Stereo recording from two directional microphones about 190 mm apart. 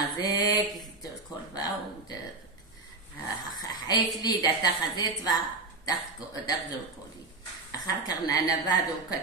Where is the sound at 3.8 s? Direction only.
20° left (ahead or behind).